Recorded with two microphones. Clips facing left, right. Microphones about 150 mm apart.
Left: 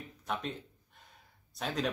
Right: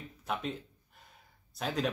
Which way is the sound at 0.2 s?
5° right (ahead or behind).